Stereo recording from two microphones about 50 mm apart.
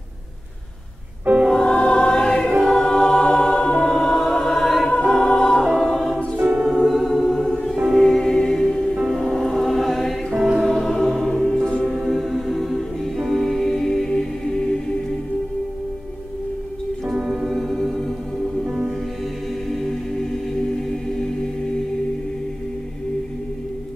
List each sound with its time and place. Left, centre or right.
1.2 s music: right
1.6 s music: centre
2.6 s choir: centre
3.7 s music: centre
6.3 s music: right
6.9 s choir: centre
7.7 s music: centre
8.0 s music: centre
11.8 s music: centre
17.1 s music: centre
17.6 s music: centre
19.7 s music: centre